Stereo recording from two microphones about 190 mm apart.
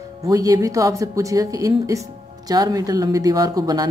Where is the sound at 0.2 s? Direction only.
20° right (ahead or behind).